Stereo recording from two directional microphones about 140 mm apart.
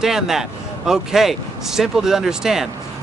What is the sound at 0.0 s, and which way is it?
Speech, 5° right (ahead or behind).